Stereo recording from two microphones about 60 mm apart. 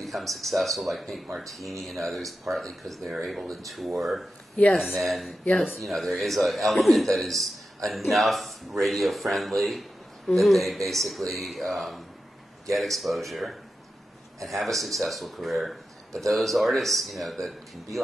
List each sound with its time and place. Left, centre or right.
0.0 s a man's voice: centre